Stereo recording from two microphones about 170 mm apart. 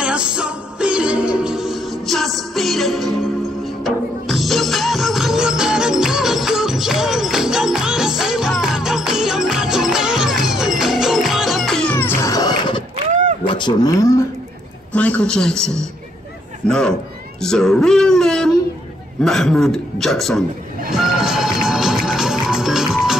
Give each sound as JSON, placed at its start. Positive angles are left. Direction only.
{"t": 0.0, "sound": "music", "side_deg": -5}
{"t": 12.9, "sound": "a sound", "side_deg": -45}
{"t": 13.5, "sound": "speech", "side_deg": 25}
{"t": 14.9, "sound": "a man's voice", "side_deg": 10}
{"t": 20.9, "sound": "music", "side_deg": -5}